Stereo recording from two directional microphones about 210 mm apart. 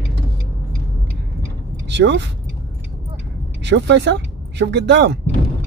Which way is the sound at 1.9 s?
55° right (ahead or behind).